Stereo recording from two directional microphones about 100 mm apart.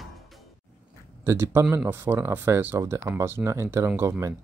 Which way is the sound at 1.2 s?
25° right (ahead or behind).